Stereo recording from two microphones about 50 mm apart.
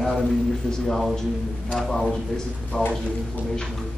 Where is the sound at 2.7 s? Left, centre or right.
Centre.